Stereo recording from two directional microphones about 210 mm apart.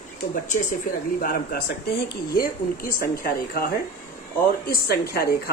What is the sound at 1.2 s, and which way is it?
Speech, 45° left (ahead or behind).